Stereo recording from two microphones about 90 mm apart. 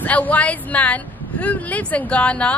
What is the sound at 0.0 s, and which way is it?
A woman's voice, 15° left (ahead or behind).